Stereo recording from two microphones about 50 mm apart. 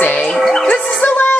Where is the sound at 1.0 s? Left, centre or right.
Left.